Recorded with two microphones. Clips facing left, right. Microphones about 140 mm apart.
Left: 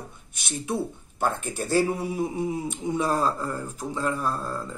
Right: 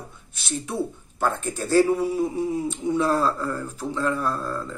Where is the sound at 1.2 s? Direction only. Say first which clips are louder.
Right 2 dB; 20° left (ahead or behind).